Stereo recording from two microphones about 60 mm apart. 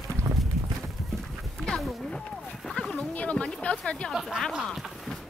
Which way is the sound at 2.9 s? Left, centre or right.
Left.